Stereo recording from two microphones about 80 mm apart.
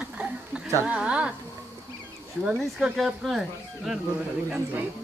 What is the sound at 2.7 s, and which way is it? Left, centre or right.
Speech, centre.